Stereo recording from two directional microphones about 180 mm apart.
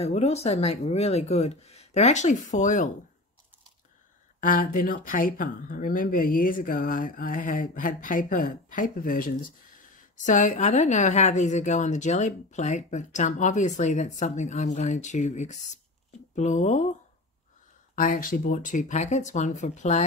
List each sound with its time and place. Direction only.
0.0 s a woman's voice: 35° left (ahead or behind)
4.4 s a woman's voice: 50° left (ahead or behind)
17.9 s a woman's voice: 50° left (ahead or behind)